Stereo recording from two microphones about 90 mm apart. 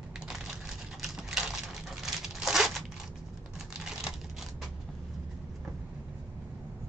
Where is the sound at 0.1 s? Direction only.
5° right (ahead or behind).